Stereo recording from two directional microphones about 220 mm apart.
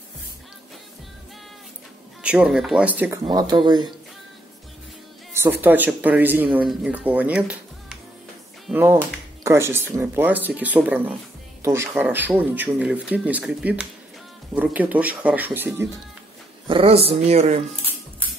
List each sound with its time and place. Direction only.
2.2 s speech: 5° right (ahead or behind)
3.3 s speech: 20° right (ahead or behind)
5.3 s speech: 10° right (ahead or behind)
16.6 s speech: 25° right (ahead or behind)